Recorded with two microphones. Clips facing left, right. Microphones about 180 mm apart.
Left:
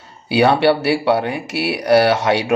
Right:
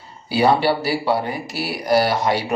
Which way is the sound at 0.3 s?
75° left (ahead or behind).